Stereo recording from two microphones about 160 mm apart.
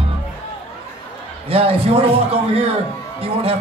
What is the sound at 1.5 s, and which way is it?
Speech, 35° right (ahead or behind).